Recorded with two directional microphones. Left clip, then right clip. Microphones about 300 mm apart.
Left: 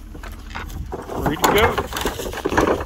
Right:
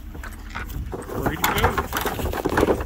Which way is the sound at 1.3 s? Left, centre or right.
Centre.